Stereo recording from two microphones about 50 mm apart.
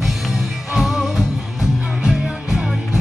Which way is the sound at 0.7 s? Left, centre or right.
Centre.